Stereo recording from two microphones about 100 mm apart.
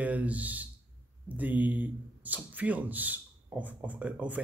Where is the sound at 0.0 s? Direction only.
15° right (ahead or behind).